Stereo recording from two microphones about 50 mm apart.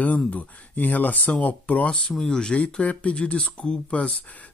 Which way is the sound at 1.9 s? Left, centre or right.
Centre.